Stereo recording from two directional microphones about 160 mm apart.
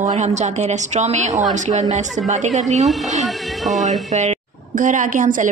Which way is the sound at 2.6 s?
45° right (ahead or behind).